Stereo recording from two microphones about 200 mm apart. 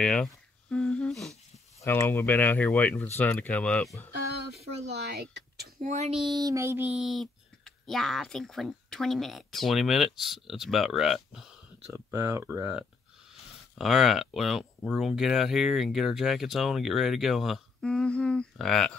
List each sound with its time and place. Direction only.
0.0 s humming: 5° left (ahead or behind)
1.8 s speech: 10° left (ahead or behind)
5.8 s speech: 35° right (ahead or behind)
6.2 s speech: 20° right (ahead or behind); by 11.5 s centre (ahead or behind)
11.9 s speech: 15° right (ahead or behind); by 18.9 s centre (ahead or behind)